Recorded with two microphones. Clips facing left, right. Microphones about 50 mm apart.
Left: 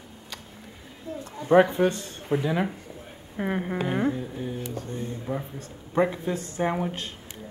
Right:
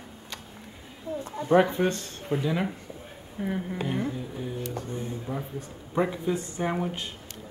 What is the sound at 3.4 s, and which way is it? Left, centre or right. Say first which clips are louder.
Speech: left 3 dB; left.